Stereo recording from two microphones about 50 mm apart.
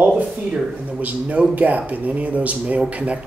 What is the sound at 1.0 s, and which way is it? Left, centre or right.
Speech, right.